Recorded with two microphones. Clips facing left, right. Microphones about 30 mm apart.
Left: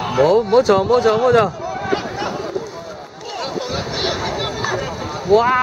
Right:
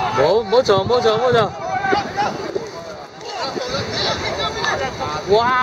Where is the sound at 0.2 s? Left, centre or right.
Right.